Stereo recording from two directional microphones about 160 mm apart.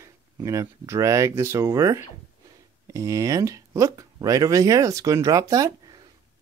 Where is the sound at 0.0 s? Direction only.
20° right (ahead or behind).